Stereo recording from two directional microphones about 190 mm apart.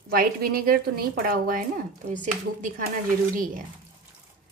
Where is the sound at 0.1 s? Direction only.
50° right (ahead or behind).